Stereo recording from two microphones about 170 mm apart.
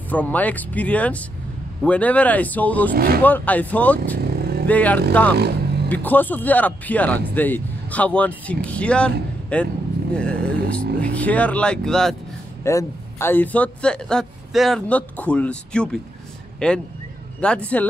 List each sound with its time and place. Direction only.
0.1 s a man's voice: 10° left (ahead or behind)
2.9 s speech: 60° right (ahead or behind)
3.2 s a man's voice: 10° left (ahead or behind)
4.2 s vehicle: 70° right (ahead or behind)
4.6 s a man's voice: 10° left (ahead or behind)
5.3 s vehicle: 70° right (ahead or behind)
5.9 s a man's voice: 10° left (ahead or behind)
10.5 s speech: 70° right (ahead or behind)
11.0 s a man's voice: 10° left (ahead or behind)
12.6 s a man's voice: 15° left (ahead or behind)